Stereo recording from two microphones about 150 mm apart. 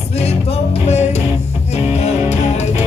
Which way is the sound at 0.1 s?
45° left (ahead or behind).